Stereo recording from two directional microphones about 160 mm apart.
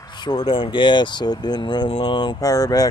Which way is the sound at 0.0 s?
30° left (ahead or behind).